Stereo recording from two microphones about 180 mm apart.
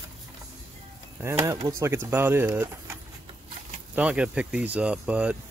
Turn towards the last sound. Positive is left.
turn(degrees=-5)  # may be behind; listen again after turning